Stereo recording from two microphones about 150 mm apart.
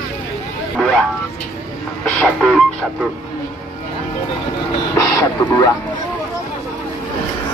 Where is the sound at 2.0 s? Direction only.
5° left (ahead or behind).